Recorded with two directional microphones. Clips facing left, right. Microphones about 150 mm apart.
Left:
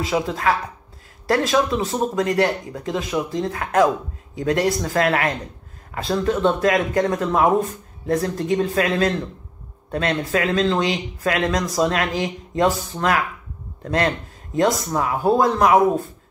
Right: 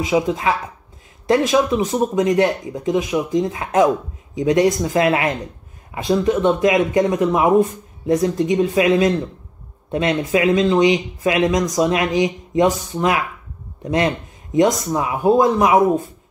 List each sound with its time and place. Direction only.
0.0 s speech: 15° right (ahead or behind)
13.8 s speech: 15° right (ahead or behind)